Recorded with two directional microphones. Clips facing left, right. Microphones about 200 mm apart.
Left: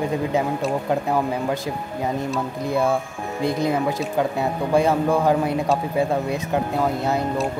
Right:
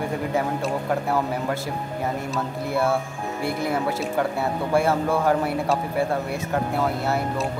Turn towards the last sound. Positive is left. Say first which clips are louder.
# left 2 dB
turn(degrees=20)  # may be behind; listen again after turning